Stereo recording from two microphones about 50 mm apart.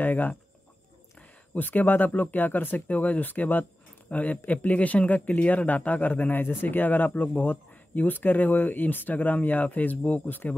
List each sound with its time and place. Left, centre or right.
0.0 s speech: left
1.5 s speech: left